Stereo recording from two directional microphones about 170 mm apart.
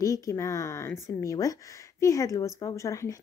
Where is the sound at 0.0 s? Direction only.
20° left (ahead or behind).